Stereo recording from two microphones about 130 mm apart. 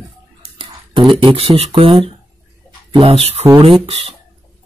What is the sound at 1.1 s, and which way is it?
Speech, 45° right (ahead or behind).